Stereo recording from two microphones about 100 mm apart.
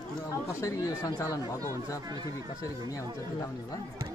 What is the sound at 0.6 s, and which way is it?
Speech, 35° left (ahead or behind).